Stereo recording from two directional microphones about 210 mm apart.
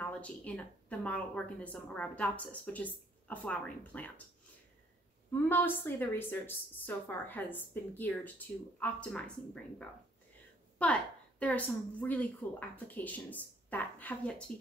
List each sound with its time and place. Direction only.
0.0 s a woman's voice: 5° left (ahead or behind)
5.3 s a woman's voice: 10° left (ahead or behind)